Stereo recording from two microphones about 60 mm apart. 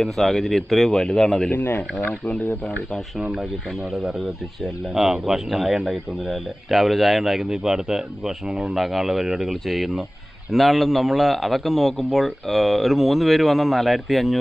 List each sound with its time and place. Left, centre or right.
0.0 s a man's voice: centre
1.5 s speech: left
4.9 s a man's voice: centre